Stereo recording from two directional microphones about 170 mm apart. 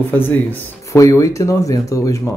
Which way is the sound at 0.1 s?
10° left (ahead or behind).